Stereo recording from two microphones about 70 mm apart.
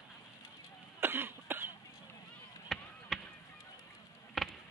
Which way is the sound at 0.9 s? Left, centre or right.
Right.